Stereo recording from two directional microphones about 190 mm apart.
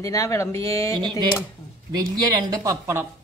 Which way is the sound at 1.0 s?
25° right (ahead or behind).